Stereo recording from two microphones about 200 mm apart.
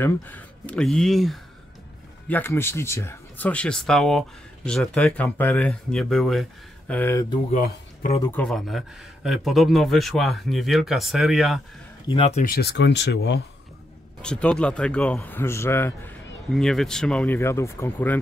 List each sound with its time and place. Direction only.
0.0 s a man's voice: 10° left (ahead or behind)
7.5 s speech: 45° left (ahead or behind)
8.2 s speech: 10° left (ahead or behind)
12.1 s speech: 30° left (ahead or behind)
12.4 s speech: 55° left (ahead or behind)
14.2 s a man's voice: 5° left (ahead or behind)